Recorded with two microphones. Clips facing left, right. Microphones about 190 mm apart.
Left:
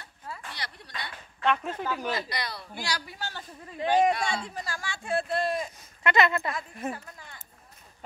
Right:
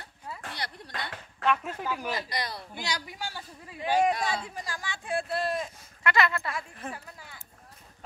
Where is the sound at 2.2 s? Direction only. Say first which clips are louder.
Right 1 dB; 45° right (ahead or behind).